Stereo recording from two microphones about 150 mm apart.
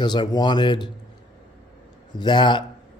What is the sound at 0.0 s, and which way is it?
Speech, 30° left (ahead or behind).